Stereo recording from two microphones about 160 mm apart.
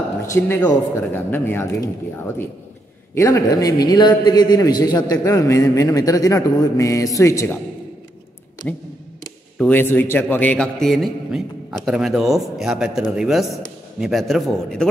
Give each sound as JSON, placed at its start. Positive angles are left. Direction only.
{"t": 0.3, "sound": "speech", "side_deg": 15}
{"t": 3.2, "sound": "a man's voice", "side_deg": 20}
{"t": 8.6, "sound": "a man's voice", "side_deg": 5}